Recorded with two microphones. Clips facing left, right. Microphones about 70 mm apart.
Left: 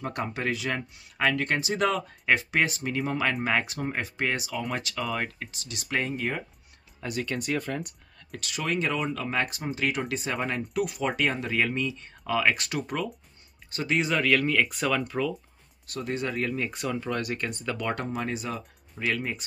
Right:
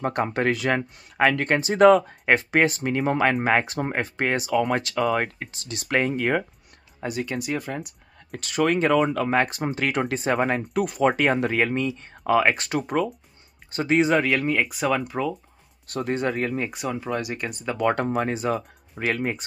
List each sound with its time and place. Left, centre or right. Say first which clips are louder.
0.0 s speech: right 7 dB; right
5.9 s speech: right 7 dB; right
7.0 s speech: right 3 dB; centre
8.3 s speech: right 8 dB; right
14.3 s speech: right 1 dB; centre
15.9 s speech: right 6 dB; right
16.7 s speech: right 2 dB; centre
17.8 s speech: right 9 dB; right